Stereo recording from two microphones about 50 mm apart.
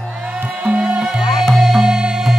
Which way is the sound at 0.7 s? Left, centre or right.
Right.